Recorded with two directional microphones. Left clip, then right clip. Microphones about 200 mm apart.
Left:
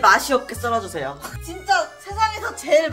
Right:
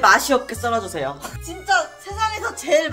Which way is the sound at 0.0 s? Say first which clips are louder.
Right 1 dB; 20° right (ahead or behind).